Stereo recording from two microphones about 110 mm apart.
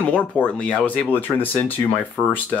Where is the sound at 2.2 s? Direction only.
Centre (ahead or behind).